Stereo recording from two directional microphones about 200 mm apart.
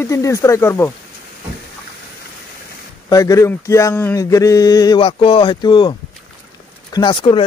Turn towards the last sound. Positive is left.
turn(degrees=25)  # may be behind; listen again after turning